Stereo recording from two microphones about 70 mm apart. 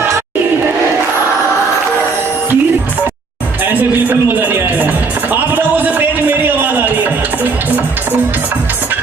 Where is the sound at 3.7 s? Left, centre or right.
Right.